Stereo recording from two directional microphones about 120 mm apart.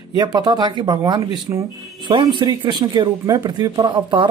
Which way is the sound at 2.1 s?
40° right (ahead or behind).